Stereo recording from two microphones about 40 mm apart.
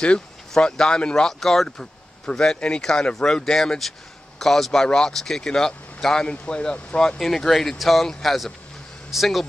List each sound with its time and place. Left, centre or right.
0.6 s speech: left
4.8 s speech: centre
7.2 s speech: centre